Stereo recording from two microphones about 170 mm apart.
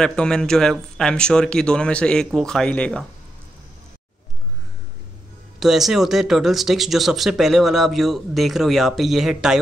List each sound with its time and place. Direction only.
0.0 s speech: 5° left (ahead or behind)
5.6 s speech: centre (ahead or behind)